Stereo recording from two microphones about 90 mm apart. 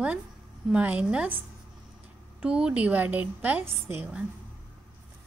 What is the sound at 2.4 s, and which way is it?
A woman's voice, 10° right (ahead or behind).